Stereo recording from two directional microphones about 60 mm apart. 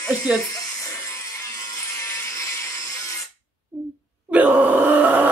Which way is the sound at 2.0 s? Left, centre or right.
Left.